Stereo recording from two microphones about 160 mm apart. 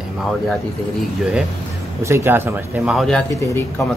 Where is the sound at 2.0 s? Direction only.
15° right (ahead or behind).